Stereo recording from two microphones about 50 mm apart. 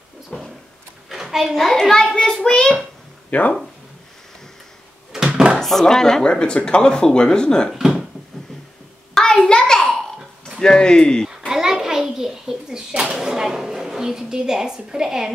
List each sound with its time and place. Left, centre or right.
0.3 s a sound: centre
1.0 s a sound: centre
1.7 s speech: centre
3.3 s speech: left
5.3 s drawer open or close: right
5.6 s speech: centre
7.7 s speech: centre
9.2 s a sound: centre
10.6 s speech: centre
11.2 s a child's voice: centre